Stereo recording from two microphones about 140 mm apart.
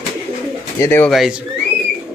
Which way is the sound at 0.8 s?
15° left (ahead or behind).